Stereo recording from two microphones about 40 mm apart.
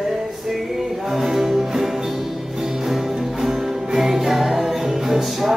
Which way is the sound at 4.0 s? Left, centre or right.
Centre.